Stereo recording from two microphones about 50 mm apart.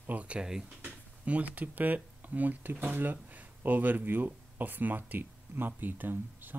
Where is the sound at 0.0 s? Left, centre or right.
Right.